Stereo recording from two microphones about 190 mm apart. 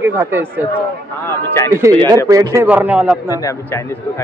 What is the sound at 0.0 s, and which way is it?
Speech, 10° right (ahead or behind).